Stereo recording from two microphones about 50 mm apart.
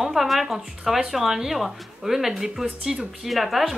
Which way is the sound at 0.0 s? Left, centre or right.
Centre.